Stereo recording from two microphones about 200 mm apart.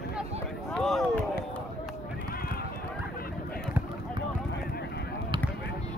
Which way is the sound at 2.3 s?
50° left (ahead or behind).